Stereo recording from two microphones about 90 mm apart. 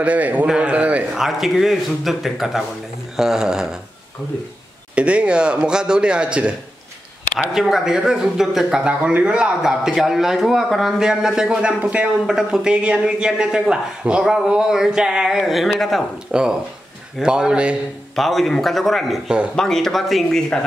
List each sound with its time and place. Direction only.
0.0 s speech: 15° right (ahead or behind)
0.5 s a sound: 15° right (ahead or behind)
1.2 s speech: centre (ahead or behind)
4.9 s speech: 15° right (ahead or behind)
7.5 s speech: 5° right (ahead or behind)
16.3 s speech: 10° right (ahead or behind)
18.1 s speech: centre (ahead or behind)